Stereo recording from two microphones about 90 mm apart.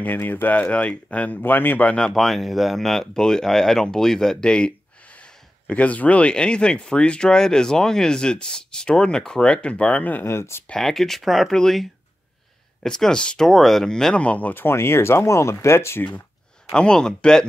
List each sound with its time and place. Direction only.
0.0 s speech: 20° left (ahead or behind)
10.7 s speech: 5° left (ahead or behind); by 16.1 s 30° left (ahead or behind)
16.7 s speech: 10° left (ahead or behind)